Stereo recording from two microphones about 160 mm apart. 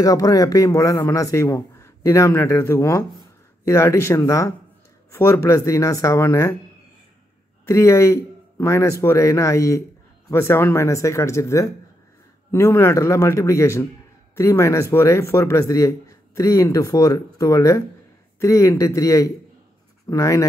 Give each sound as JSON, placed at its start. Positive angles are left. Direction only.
{"t": 0.0, "sound": "speech", "side_deg": 20}
{"t": 7.6, "sound": "speech", "side_deg": 20}